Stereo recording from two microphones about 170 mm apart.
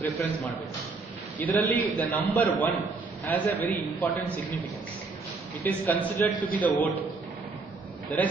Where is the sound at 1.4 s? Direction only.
10° left (ahead or behind).